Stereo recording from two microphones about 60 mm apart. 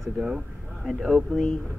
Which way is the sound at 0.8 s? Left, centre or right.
Centre.